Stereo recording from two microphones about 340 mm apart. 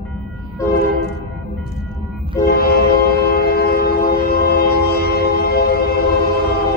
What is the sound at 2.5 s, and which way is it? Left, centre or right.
Train, left.